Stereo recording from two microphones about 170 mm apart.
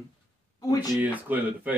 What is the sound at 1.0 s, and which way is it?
Speech, 10° right (ahead or behind).